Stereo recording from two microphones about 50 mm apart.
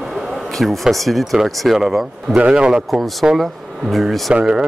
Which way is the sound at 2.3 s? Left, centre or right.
Right.